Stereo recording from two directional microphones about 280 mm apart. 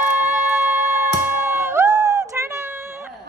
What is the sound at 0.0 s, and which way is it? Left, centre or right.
Music, centre.